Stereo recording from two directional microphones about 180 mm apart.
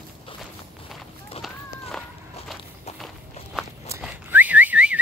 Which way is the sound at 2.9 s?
35° left (ahead or behind).